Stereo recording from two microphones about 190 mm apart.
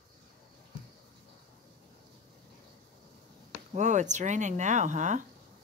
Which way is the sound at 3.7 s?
40° right (ahead or behind).